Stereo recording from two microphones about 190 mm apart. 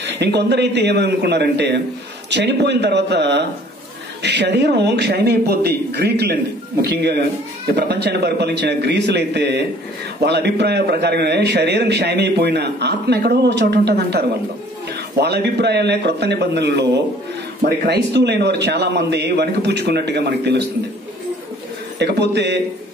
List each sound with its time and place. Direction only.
0.0 s a man's voice: 65° right (ahead or behind)
21.9 s a man's voice: 60° right (ahead or behind)